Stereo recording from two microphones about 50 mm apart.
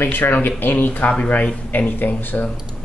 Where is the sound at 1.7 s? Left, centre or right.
Left.